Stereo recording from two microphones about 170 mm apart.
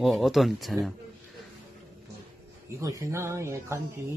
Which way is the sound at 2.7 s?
20° right (ahead or behind).